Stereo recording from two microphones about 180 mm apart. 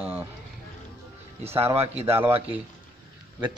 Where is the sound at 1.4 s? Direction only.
35° right (ahead or behind).